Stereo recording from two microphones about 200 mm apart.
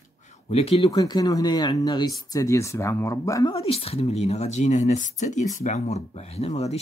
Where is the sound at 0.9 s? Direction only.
20° left (ahead or behind).